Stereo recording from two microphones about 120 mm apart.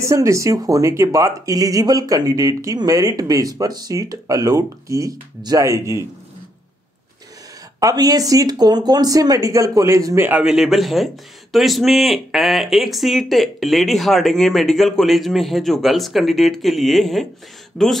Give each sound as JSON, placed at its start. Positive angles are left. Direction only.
{"t": 0.0, "sound": "speech", "side_deg": -25}
{"t": 7.8, "sound": "speech", "side_deg": -30}
{"t": 10.4, "sound": "speech", "side_deg": -5}